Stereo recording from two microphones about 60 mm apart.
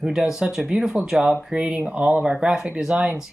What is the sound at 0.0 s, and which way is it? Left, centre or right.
Speech, centre.